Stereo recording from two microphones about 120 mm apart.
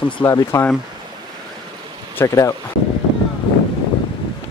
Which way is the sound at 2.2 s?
25° left (ahead or behind).